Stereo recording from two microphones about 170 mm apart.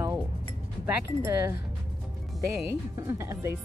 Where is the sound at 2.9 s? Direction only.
15° right (ahead or behind).